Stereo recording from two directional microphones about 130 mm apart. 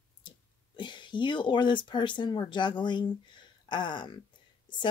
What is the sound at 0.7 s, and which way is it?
Speech, 35° left (ahead or behind).